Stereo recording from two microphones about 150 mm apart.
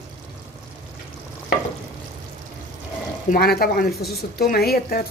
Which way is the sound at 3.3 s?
85° left.